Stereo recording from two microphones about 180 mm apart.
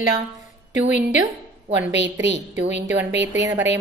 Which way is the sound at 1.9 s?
80° right.